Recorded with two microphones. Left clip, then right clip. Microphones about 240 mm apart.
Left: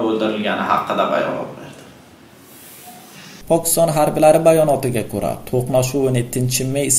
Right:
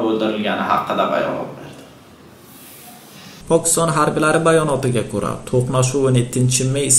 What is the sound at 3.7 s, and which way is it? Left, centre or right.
Speech, centre.